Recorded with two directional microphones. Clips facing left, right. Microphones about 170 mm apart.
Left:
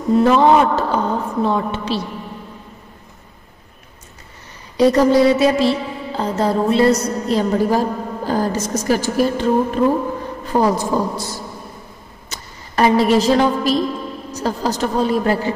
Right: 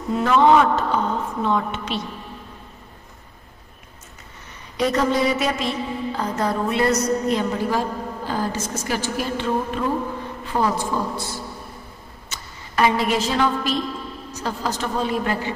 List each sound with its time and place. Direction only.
0.1 s music: 35° left (ahead or behind)
4.7 s music: 35° left (ahead or behind)
12.3 s a sound: 40° left (ahead or behind)
14.3 s music: 40° left (ahead or behind)